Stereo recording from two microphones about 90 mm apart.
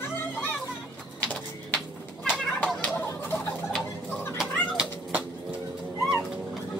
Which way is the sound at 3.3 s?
10° left (ahead or behind).